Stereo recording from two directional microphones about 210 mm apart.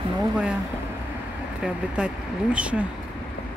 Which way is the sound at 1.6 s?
5° right (ahead or behind).